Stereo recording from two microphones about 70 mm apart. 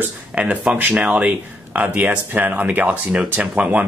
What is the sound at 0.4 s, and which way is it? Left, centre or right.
Speech, centre.